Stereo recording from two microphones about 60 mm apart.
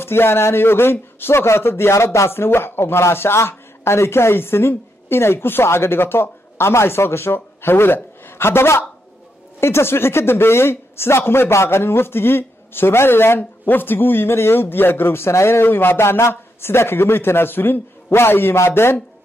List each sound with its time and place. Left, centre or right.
0.0 s a man's voice: left